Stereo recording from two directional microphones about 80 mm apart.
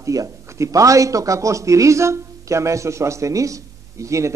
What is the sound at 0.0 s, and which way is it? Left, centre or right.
A man's voice, right.